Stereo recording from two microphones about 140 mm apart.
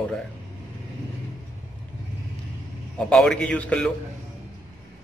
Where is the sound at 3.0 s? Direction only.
5° left (ahead or behind).